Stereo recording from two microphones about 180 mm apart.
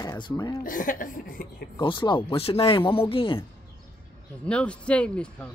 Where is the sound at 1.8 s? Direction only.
25° left (ahead or behind).